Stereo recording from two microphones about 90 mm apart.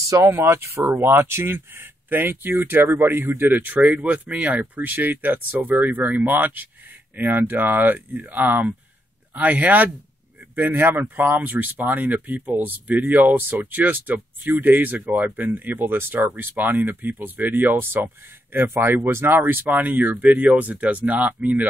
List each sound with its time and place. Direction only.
0.0 s speech: 40° right (ahead or behind)
0.3 s speech: 30° right (ahead or behind)